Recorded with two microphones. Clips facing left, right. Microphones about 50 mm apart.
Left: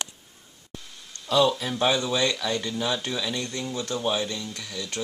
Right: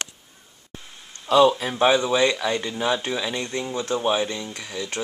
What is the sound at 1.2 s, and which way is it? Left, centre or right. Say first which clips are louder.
Speech: right 5 dB; right.